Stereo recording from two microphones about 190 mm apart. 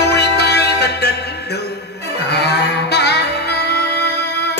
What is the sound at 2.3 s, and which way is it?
Music, 60° left (ahead or behind).